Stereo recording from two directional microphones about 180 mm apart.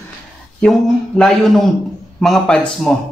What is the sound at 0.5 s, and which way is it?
Speech, 5° left (ahead or behind).